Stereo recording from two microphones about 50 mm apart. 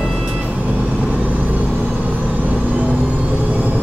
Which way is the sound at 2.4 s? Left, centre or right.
Right.